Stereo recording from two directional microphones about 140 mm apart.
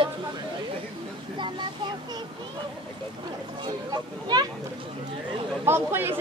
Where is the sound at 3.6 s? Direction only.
30° right (ahead or behind).